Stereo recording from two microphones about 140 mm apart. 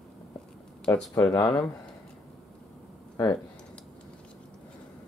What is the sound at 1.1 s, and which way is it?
Speech, 25° left (ahead or behind).